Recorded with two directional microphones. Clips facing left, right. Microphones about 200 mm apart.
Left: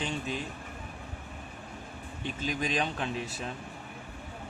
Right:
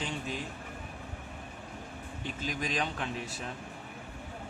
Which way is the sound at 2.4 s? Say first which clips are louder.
Left 3 dB; 25° left (ahead or behind).